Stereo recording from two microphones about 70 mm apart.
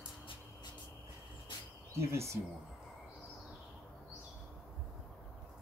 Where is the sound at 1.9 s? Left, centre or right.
Right.